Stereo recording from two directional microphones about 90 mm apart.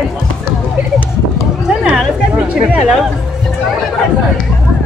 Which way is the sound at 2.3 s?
15° right (ahead or behind).